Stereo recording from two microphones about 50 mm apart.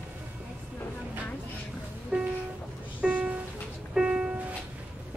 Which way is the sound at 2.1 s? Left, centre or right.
Right.